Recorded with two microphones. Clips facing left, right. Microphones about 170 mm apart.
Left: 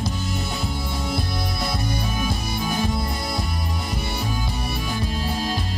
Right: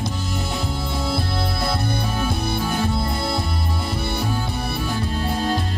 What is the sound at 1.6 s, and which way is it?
Music, 60° right (ahead or behind).